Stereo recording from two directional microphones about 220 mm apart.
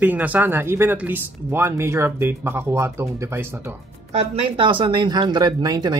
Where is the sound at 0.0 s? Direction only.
5° right (ahead or behind).